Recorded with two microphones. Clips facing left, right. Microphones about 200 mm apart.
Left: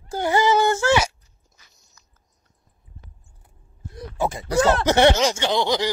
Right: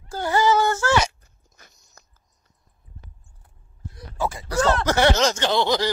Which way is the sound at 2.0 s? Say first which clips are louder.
Right 9 dB; 50° right (ahead or behind).